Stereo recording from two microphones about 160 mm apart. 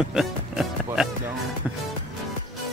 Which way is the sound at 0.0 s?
5° right (ahead or behind).